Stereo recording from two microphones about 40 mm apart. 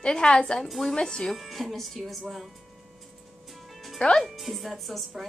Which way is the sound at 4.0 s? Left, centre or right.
Left.